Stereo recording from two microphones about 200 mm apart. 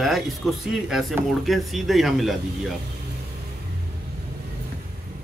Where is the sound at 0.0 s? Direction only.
Centre (ahead or behind).